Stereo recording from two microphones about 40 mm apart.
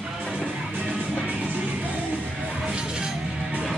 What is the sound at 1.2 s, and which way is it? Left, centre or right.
Music, right.